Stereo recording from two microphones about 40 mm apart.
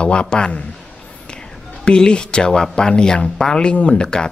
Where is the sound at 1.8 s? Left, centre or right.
Left.